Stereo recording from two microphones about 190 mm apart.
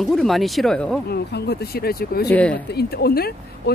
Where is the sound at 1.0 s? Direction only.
55° left (ahead or behind).